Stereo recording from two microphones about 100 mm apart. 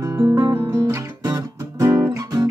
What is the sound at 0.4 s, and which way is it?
Music, 50° right (ahead or behind).